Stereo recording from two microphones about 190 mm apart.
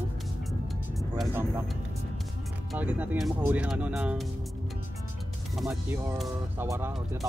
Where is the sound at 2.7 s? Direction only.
10° right (ahead or behind).